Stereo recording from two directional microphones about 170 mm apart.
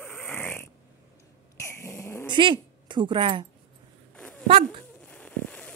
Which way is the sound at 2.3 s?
30° right (ahead or behind).